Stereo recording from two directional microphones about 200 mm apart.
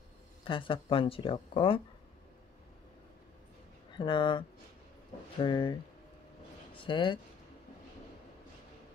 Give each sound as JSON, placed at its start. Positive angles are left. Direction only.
{"t": 0.5, "sound": "speech", "side_deg": 25}
{"t": 4.0, "sound": "speech", "side_deg": 25}